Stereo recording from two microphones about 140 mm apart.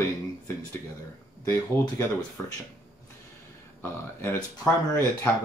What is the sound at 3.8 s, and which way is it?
Speech, 15° left (ahead or behind).